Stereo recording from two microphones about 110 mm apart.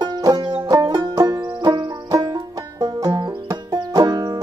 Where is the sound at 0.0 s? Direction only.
40° right (ahead or behind).